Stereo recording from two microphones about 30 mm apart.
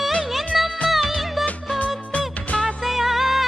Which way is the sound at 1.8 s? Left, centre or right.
Left.